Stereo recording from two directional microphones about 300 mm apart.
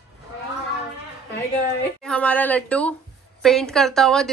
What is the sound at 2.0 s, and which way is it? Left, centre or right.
A woman's voice, centre.